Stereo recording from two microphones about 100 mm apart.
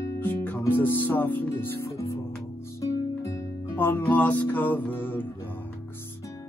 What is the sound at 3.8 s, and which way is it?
Music, 20° left (ahead or behind).